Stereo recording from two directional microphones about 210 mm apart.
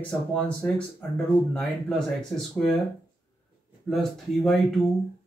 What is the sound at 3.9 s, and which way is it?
Speech, centre (ahead or behind).